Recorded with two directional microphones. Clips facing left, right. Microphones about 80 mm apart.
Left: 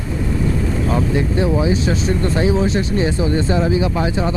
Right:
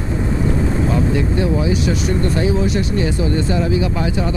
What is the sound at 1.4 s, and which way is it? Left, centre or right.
Speech, left.